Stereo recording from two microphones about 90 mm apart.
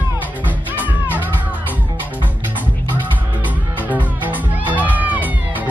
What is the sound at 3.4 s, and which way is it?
Music, 20° right (ahead or behind).